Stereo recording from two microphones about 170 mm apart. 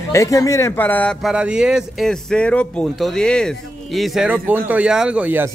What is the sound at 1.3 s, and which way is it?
Speech, 5° right (ahead or behind).